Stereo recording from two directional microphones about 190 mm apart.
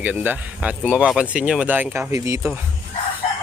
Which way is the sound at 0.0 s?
10° right (ahead or behind).